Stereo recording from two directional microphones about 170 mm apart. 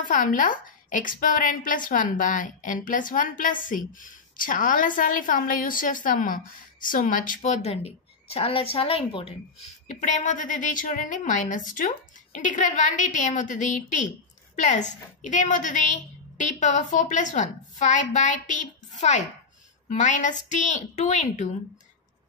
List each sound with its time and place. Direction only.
0.0 s a woman's voice: 50° left (ahead or behind); by 9.3 s 35° left (ahead or behind)
9.8 s a woman's voice: 45° left (ahead or behind)